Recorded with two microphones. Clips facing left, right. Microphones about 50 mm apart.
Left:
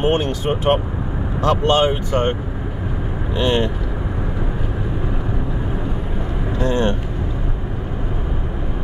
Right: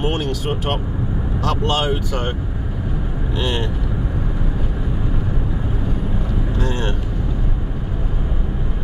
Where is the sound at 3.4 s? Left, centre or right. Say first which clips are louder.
Left 6 dB; left.